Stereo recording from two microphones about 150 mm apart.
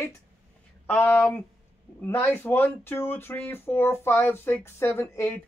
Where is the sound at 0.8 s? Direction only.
10° left (ahead or behind).